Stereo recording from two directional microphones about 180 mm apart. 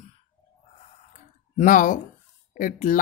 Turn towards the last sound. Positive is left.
turn(degrees=50)  # may be behind; listen again after turning